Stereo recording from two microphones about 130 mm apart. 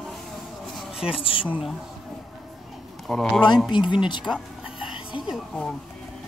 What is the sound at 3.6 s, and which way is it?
Speech, 35° left (ahead or behind).